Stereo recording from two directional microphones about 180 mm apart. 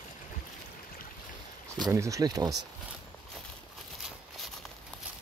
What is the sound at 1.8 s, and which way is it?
Speech, 15° right (ahead or behind).